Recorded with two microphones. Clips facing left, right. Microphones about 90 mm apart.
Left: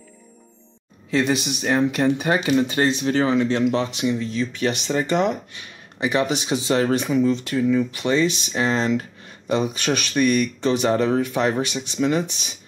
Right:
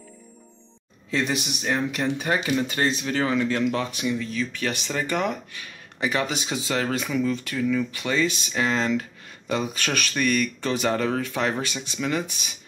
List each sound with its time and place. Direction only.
1.1 s speech: 20° left (ahead or behind)